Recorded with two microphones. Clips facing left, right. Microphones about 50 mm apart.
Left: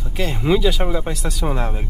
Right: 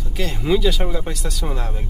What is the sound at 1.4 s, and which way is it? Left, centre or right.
Speech, centre.